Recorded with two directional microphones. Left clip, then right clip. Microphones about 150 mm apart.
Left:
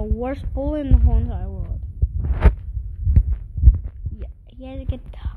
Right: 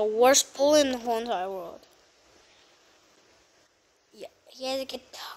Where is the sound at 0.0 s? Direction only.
15° right (ahead or behind).